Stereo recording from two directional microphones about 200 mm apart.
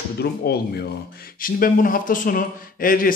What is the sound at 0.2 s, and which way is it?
Speech, 55° left (ahead or behind).